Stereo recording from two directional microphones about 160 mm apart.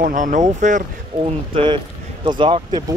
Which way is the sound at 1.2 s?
35° right (ahead or behind).